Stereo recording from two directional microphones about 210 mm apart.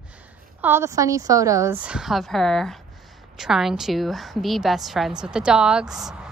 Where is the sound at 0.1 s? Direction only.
10° right (ahead or behind).